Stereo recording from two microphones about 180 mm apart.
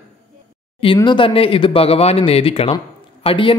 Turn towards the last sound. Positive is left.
turn(degrees=30)  # may be behind; listen again after turning